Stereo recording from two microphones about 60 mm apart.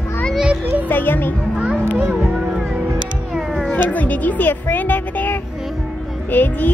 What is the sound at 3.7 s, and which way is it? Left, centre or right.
A child's voice, left.